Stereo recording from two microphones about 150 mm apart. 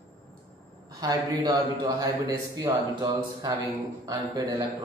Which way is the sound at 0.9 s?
25° right (ahead or behind).